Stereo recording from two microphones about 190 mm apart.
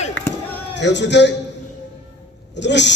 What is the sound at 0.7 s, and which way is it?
Speech, 70° left (ahead or behind).